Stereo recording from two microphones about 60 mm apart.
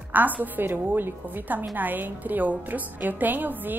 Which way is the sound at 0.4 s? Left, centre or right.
Right.